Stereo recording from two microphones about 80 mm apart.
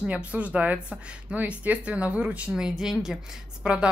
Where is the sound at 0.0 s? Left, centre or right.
Centre.